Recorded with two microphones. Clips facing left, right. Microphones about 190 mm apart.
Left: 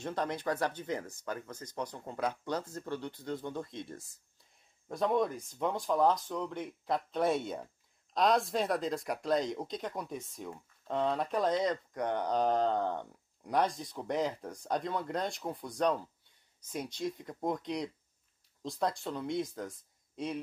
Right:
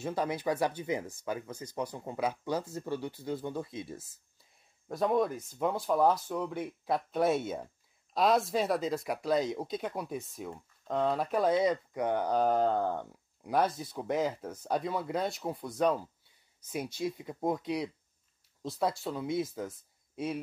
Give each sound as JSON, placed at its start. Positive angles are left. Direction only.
{"t": 0.0, "sound": "speech", "side_deg": -5}